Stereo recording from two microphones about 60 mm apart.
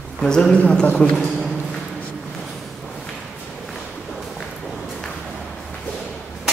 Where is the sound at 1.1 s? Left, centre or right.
Centre.